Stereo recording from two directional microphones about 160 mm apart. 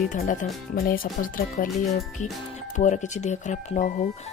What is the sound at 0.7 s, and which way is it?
Speech, 65° left (ahead or behind).